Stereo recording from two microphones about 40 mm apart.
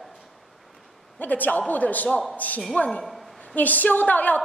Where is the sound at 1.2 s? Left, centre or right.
Left.